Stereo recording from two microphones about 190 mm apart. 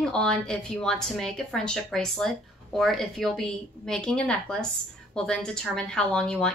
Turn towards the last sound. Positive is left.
turn(degrees=5)  # may be behind; listen again after turning